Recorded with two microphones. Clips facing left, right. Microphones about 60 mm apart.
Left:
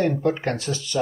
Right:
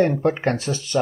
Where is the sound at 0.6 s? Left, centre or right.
Right.